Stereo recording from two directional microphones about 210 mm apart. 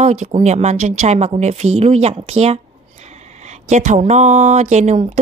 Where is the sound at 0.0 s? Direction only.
35° right (ahead or behind).